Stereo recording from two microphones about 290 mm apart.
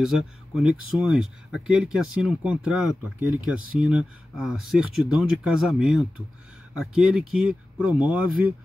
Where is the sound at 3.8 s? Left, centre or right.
Centre.